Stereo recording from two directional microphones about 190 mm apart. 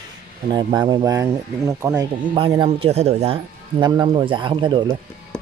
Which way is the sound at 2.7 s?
35° right (ahead or behind).